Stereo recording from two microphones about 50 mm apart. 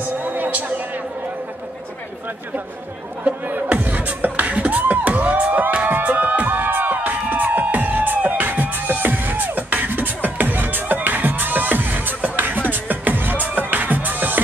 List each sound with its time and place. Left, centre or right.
0.2 s music: right
3.3 s beatboxing: right
5.9 s music: right